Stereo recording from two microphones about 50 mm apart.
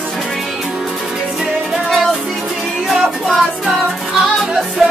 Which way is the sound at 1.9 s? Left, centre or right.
Centre.